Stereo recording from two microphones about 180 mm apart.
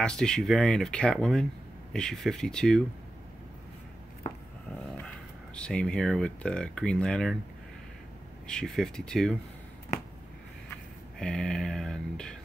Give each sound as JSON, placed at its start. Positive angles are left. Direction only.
{"t": 0.0, "sound": "speech", "side_deg": 5}
{"t": 5.6, "sound": "speech", "side_deg": 5}
{"t": 8.5, "sound": "speech", "side_deg": 5}
{"t": 11.1, "sound": "speech", "side_deg": 5}